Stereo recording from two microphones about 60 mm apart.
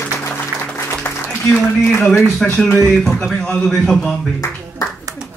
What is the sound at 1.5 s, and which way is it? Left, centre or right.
Speech, centre.